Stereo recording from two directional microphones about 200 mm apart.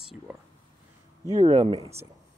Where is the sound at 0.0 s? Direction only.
Centre (ahead or behind).